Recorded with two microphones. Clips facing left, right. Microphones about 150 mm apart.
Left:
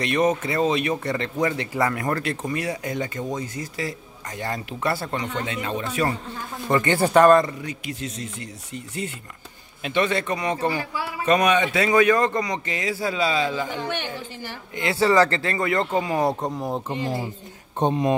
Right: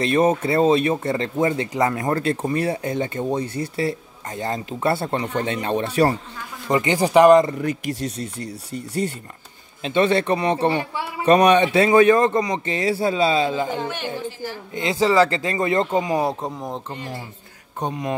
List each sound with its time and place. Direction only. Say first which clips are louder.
0.0 s speech: right 3 dB; 30° right (ahead or behind)
6.7 s speech: right 1 dB; 15° right (ahead or behind)
8.4 s speech: right 5 dB; 35° right (ahead or behind)
15.0 s speech: right 1 dB; 10° right (ahead or behind)
16.3 s speech: left 2 dB; centre (ahead or behind)
16.9 s speech: left 6 dB; 20° left (ahead or behind)